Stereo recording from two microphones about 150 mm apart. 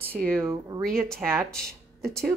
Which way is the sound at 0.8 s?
5° left (ahead or behind).